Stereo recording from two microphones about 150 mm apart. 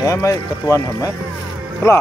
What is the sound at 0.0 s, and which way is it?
Speech, 20° left (ahead or behind).